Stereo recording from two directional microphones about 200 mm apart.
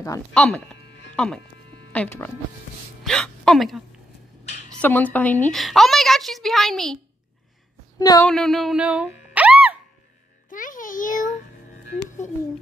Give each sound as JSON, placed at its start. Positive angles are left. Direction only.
{"t": 0.3, "sound": "a woman's voice", "side_deg": 5}
{"t": 0.8, "sound": "music", "side_deg": 60}
{"t": 1.1, "sound": "speech", "side_deg": 5}
{"t": 4.8, "sound": "a woman's voice", "side_deg": 10}
{"t": 8.0, "sound": "a sound", "side_deg": 20}
{"t": 8.3, "sound": "speech", "side_deg": 0}
{"t": 10.5, "sound": "music", "side_deg": 40}